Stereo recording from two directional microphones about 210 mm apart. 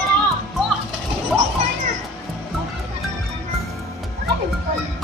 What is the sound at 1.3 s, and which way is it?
Music, centre (ahead or behind).